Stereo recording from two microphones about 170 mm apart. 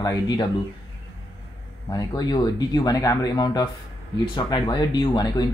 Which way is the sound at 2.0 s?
25° left (ahead or behind).